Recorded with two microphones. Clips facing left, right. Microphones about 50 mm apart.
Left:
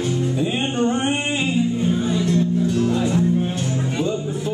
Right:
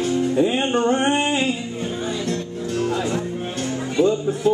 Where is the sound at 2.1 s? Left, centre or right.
Centre.